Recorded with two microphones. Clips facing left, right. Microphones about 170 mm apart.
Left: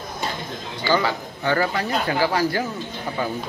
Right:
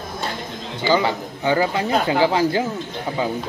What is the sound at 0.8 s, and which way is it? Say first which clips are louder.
Speech: right 3 dB; 20° right (ahead or behind).